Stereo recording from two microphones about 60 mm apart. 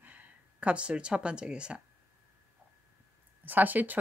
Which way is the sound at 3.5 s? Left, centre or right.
Right.